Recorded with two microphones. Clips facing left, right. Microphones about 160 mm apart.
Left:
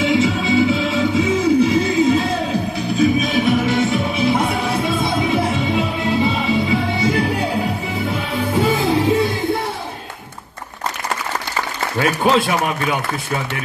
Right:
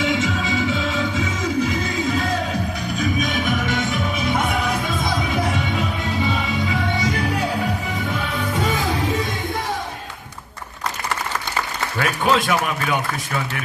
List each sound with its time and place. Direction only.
0.0 s music: 30° left (ahead or behind)
12.0 s a man's voice: 30° left (ahead or behind)